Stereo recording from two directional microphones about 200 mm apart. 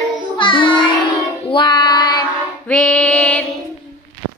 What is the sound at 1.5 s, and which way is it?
Child singing, 25° left (ahead or behind).